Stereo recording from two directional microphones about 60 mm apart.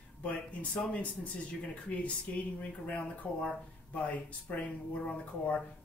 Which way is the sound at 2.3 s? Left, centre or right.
Left.